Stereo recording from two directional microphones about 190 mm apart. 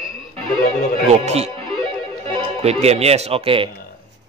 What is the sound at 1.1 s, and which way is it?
Speech, 35° right (ahead or behind).